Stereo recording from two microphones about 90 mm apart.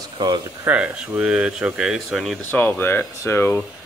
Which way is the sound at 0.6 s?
15° right (ahead or behind).